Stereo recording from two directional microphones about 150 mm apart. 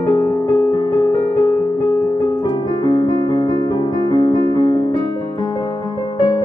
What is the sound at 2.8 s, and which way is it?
Piano, 25° left (ahead or behind).